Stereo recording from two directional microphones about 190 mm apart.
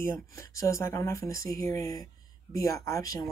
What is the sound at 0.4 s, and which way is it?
Speech, 15° left (ahead or behind).